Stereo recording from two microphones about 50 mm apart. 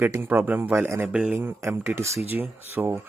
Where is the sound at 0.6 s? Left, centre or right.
Right.